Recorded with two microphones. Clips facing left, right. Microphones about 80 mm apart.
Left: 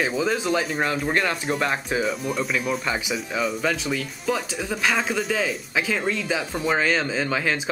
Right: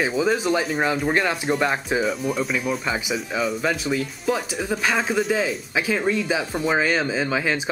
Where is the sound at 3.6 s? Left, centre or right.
Centre.